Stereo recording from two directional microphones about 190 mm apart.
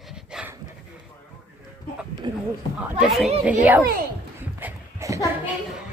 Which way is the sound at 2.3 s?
20° right (ahead or behind).